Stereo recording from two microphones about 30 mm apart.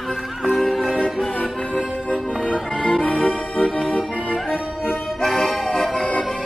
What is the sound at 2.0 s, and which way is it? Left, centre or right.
Music, left.